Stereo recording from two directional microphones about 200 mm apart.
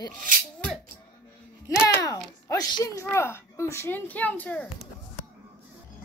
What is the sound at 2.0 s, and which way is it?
Speech, 15° left (ahead or behind).